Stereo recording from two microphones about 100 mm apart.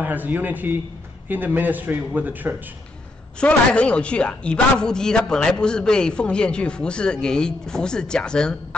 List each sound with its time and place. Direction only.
0.0 s a man's voice: 20° right (ahead or behind)
3.3 s a woman's voice: 10° left (ahead or behind)